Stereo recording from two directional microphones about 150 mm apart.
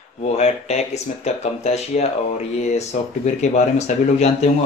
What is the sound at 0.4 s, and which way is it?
Speech, 45° left (ahead or behind).